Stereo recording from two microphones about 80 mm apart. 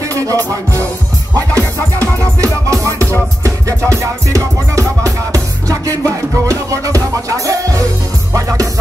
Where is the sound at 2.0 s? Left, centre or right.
Centre.